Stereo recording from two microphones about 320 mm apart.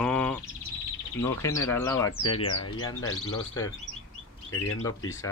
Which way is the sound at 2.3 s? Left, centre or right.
Left.